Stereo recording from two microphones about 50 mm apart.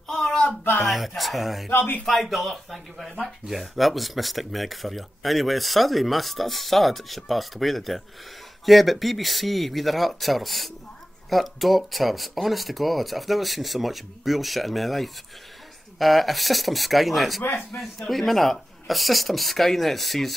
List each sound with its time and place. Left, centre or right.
0.1 s a sound: centre
0.8 s speech: centre
1.7 s speech: left
2.2 s speech: centre